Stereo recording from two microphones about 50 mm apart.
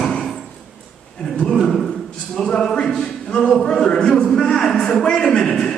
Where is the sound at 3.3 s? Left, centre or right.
Centre.